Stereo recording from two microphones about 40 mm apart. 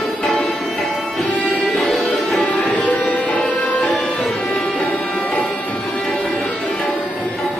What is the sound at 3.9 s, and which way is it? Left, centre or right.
Music, centre.